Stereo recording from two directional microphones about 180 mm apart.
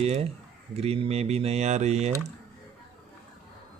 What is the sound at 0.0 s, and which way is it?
Speech, 35° right (ahead or behind).